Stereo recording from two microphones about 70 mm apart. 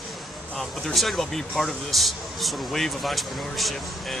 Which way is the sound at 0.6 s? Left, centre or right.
Centre.